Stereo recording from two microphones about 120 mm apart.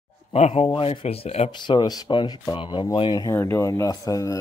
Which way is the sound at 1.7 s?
40° left (ahead or behind).